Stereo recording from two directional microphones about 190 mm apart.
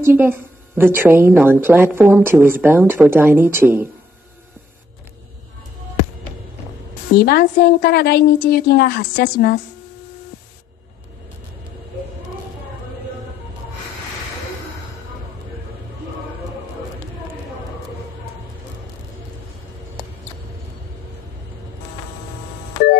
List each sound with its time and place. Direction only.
0.0 s a woman's voice: 10° right (ahead or behind)
7.2 s a woman's voice: 55° left (ahead or behind)